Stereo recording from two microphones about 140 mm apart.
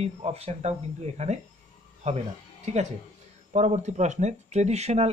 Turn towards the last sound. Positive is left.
turn(degrees=-50)  # may be behind; listen again after turning